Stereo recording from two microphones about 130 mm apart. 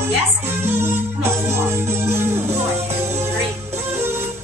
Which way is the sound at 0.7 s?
20° right (ahead or behind).